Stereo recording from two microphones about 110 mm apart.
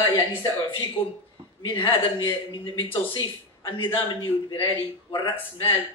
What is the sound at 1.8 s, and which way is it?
A man's voice, 55° left (ahead or behind).